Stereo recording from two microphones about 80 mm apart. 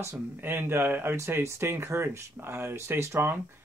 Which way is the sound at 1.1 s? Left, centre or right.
Right.